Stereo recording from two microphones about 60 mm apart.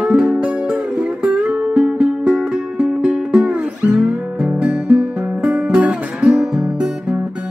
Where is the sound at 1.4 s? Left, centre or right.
Right.